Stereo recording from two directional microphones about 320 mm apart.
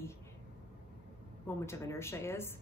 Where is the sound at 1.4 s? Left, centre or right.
Centre.